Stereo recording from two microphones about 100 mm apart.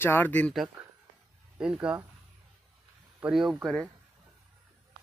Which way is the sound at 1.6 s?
10° right (ahead or behind).